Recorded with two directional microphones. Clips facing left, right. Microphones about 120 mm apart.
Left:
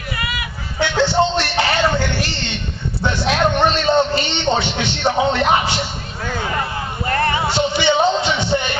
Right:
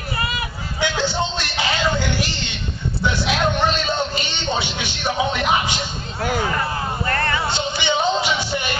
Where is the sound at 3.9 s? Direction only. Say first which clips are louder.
Left 8 dB; 55° left (ahead or behind).